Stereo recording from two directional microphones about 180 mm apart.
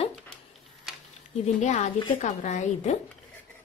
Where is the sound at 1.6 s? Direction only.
40° left (ahead or behind).